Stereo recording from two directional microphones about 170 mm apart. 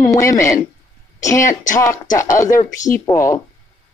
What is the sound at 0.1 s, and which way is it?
Speech, 20° left (ahead or behind).